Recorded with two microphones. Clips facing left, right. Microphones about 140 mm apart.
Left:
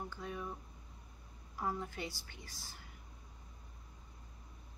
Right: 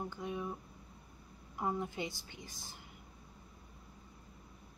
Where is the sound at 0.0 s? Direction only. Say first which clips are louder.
Right 3 dB; 20° right (ahead or behind).